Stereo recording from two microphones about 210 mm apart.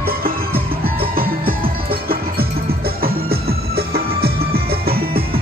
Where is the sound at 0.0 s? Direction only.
45° right (ahead or behind).